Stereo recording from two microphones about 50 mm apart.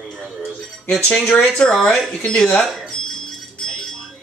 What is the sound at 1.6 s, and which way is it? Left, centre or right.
A woman's voice, centre.